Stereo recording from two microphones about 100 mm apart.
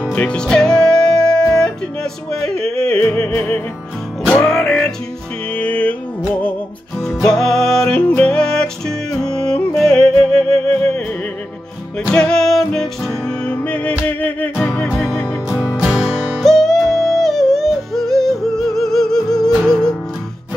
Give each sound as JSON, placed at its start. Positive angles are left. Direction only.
{"t": 0.0, "sound": "music", "side_deg": 15}
{"t": 2.5, "sound": "yodeling", "side_deg": -85}
{"t": 2.8, "sound": "music", "side_deg": 10}
{"t": 4.4, "sound": "music", "side_deg": 5}
{"t": 7.0, "sound": "music", "side_deg": 0}
{"t": 8.2, "sound": "yodeling", "side_deg": 10}
{"t": 9.8, "sound": "music", "side_deg": 5}
{"t": 12.0, "sound": "music", "side_deg": 10}
{"t": 16.3, "sound": "music", "side_deg": 5}